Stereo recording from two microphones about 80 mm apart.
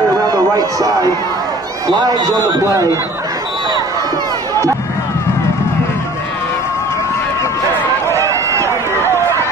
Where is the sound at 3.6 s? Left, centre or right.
Right.